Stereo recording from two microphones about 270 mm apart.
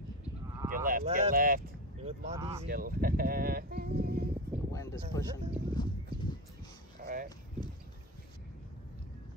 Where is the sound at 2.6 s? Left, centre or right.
Right.